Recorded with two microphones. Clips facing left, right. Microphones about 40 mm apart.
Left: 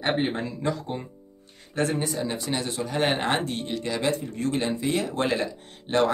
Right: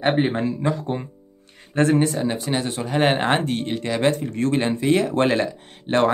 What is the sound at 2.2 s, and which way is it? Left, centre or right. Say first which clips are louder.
Speech: right 5 dB; right.